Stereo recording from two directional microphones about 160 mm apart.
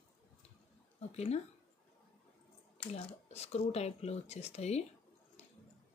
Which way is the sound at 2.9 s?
40° left (ahead or behind).